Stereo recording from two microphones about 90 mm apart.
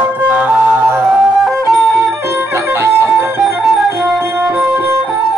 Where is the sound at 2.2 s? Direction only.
30° right (ahead or behind).